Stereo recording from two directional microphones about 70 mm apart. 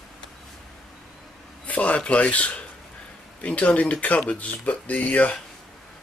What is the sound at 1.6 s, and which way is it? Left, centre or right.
Speech, centre.